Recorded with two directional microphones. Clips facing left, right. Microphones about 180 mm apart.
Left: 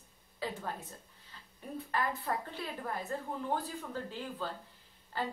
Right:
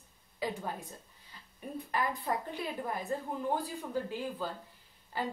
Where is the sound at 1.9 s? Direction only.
15° right (ahead or behind).